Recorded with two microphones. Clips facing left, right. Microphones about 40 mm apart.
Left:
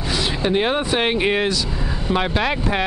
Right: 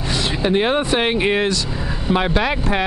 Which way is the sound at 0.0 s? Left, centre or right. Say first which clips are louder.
Right 1 dB; centre.